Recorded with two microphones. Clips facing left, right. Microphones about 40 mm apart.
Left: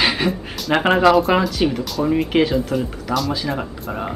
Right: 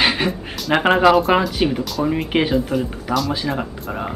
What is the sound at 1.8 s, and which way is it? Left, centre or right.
Speech, centre.